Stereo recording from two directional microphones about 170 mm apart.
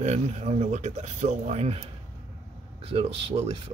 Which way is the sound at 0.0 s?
40° right (ahead or behind).